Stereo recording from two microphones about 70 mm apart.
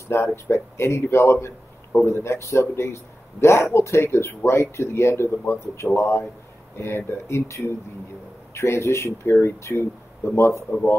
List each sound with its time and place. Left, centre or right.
0.1 s a man's voice: left